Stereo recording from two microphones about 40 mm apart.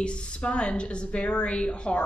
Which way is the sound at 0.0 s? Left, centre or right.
Left.